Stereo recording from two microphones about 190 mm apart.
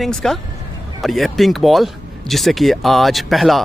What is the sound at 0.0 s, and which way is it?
Speech, centre (ahead or behind).